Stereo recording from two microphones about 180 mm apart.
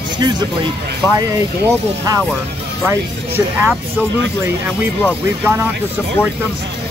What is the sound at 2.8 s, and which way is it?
Speech, 15° right (ahead or behind).